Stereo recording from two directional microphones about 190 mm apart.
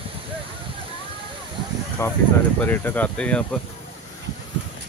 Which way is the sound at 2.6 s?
10° left (ahead or behind).